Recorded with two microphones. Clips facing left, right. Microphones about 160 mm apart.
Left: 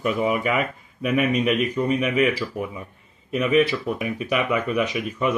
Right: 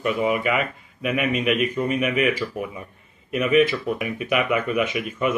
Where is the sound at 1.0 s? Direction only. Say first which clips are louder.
Left 2 dB; 40° left (ahead or behind).